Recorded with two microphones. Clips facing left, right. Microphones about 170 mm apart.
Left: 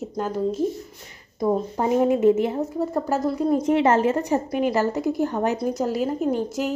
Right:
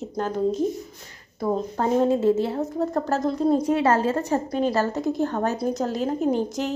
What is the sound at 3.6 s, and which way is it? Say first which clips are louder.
A woman's voice: left 2 dB; 20° left (ahead or behind).